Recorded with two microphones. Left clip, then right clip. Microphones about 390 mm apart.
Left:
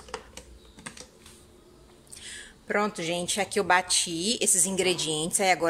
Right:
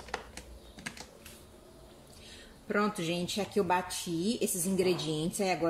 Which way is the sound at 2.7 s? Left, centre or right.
Centre.